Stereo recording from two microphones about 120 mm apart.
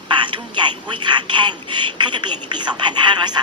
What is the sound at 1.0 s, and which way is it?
Speech, 40° right (ahead or behind).